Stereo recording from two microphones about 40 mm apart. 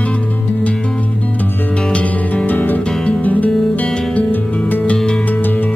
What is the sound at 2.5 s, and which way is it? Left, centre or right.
Music, left.